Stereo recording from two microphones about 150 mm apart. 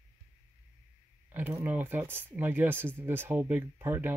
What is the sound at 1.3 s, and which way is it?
Speech, 10° right (ahead or behind).